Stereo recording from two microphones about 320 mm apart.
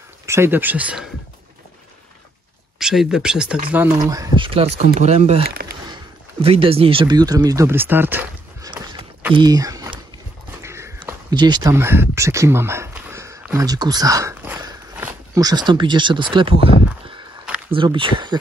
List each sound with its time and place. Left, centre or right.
0.3 s speech: centre
2.8 s speech: centre; by 5.7 s right
6.4 s speech: centre
10.6 s a sound: centre
17.6 s speech: centre